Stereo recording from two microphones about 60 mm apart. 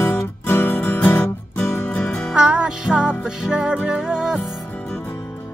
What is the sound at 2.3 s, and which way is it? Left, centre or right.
Music, centre.